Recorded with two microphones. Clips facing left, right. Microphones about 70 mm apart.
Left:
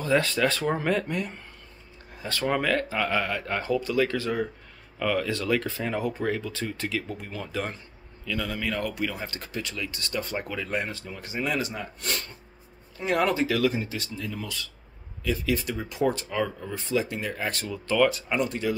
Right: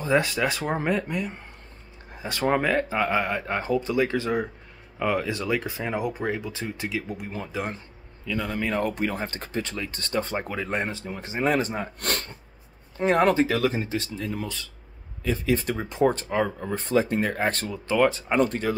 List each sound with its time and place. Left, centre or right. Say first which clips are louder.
0.0 s speech: even; right
0.9 s speech: right 1 dB; centre
2.4 s speech: right 3 dB; right
12.0 s speech: right 1 dB; right
12.9 s speech: right 5 dB; right
17.8 s speech: right 1 dB; right
18.4 s speech: right 4 dB; right